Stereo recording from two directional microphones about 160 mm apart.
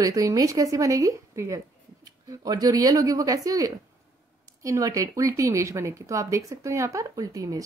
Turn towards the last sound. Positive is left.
turn(degrees=-20)  # may be behind; listen again after turning